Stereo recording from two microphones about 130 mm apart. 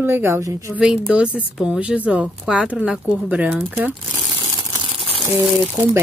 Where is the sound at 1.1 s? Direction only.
5° right (ahead or behind).